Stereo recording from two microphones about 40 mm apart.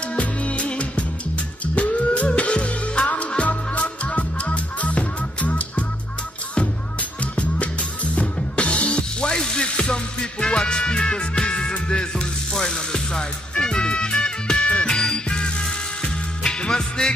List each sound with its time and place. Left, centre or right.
0.1 s music: left